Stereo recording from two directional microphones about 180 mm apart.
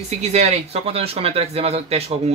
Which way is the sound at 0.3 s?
35° right (ahead or behind).